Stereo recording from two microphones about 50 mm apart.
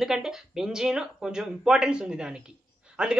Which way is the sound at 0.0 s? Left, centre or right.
Centre.